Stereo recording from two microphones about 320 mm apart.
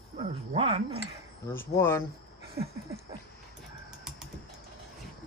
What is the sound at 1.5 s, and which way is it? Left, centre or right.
Speech, centre.